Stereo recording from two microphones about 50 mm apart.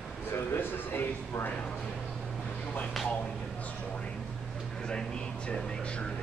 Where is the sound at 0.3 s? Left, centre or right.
Left.